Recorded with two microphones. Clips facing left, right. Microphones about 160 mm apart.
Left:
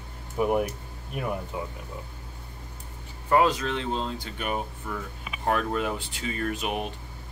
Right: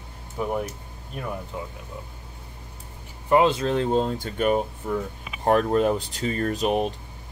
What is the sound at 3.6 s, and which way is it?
Speech, 45° right (ahead or behind).